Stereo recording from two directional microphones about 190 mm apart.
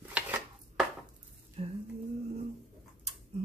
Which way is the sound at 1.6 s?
35° right (ahead or behind).